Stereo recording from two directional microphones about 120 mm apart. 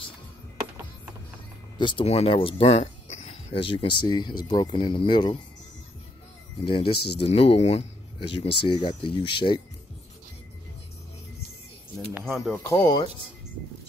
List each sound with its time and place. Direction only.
1.8 s speech: 40° left (ahead or behind)
2.0 s speech: 55° left (ahead or behind)
6.6 s speech: 50° left (ahead or behind)
12.1 s speech: centre (ahead or behind)
12.5 s speech: 25° left (ahead or behind)